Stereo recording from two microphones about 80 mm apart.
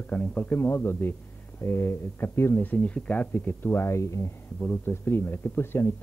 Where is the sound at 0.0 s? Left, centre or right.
Centre; by 4.3 s left.